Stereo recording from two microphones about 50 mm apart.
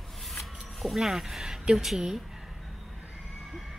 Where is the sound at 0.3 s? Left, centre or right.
Centre.